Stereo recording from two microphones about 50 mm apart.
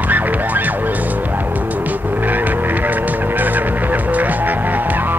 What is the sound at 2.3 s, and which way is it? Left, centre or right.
Vehicle, right.